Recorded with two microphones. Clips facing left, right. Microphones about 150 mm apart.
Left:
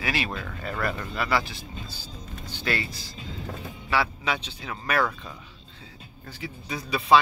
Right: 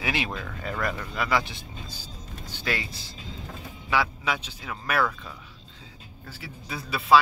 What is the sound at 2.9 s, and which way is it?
Speech, 25° right (ahead or behind).